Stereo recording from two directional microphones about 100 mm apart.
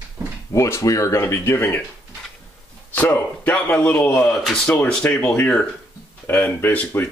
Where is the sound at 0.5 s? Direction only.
30° left (ahead or behind).